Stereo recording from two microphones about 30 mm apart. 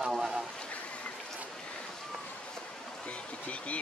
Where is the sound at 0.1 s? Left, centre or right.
Centre.